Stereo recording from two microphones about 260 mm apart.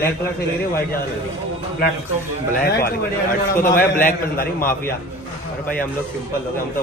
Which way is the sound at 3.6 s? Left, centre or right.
Left.